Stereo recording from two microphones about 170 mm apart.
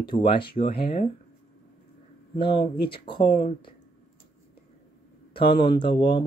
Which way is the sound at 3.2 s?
50° left (ahead or behind).